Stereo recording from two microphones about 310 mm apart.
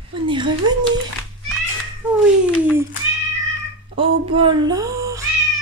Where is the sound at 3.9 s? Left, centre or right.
Centre.